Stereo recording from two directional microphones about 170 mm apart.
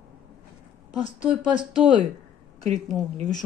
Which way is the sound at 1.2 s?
10° right (ahead or behind).